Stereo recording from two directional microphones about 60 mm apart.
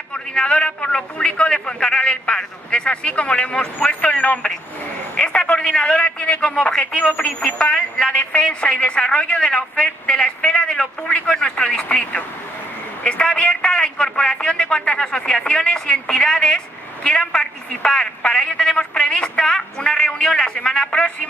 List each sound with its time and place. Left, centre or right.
0.1 s a man's voice: centre